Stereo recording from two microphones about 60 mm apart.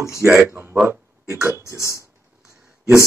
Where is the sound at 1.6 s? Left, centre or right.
Left.